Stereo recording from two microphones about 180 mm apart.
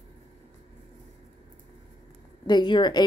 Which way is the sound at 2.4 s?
25° left (ahead or behind).